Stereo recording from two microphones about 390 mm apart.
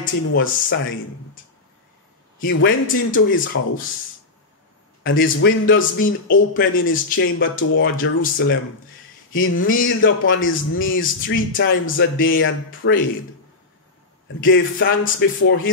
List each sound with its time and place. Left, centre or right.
0.0 s a man's voice: left
2.3 s a man's voice: left
5.0 s a man's voice: left
14.4 s a man's voice: left